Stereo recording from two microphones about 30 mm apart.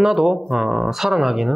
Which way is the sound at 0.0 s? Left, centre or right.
Centre.